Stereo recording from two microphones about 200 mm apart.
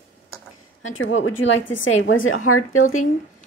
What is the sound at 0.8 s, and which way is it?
A woman's voice, 85° left.